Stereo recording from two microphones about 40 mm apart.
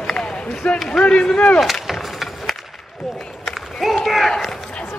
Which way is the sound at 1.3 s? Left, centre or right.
Left.